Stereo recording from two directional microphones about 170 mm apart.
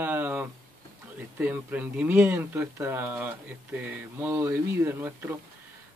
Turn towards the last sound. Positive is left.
turn(degrees=-15)  # may be behind; listen again after turning